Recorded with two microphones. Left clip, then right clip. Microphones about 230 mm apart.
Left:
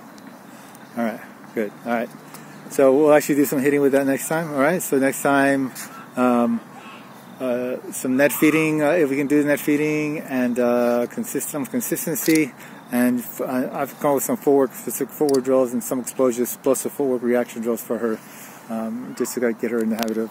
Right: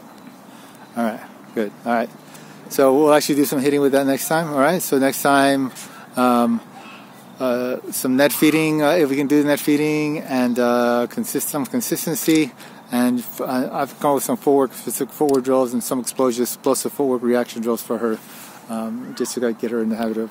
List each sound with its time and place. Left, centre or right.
1.0 s speech: centre
9.7 s speech: right
11.7 s speech: centre